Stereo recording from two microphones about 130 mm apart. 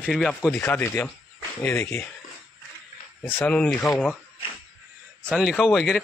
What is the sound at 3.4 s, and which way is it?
Speech, 10° left (ahead or behind).